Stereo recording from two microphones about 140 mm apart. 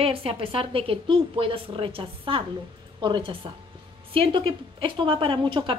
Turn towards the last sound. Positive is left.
turn(degrees=-35)  # may be behind; listen again after turning